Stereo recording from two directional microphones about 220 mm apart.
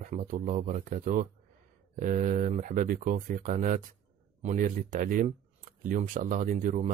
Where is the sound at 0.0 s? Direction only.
35° right (ahead or behind).